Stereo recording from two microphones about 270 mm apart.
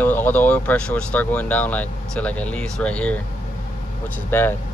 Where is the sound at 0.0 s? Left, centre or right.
Centre.